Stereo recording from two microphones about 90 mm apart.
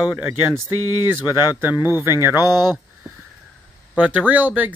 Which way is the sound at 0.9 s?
25° right (ahead or behind).